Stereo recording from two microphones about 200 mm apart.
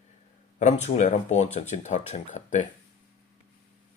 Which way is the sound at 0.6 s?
35° left (ahead or behind).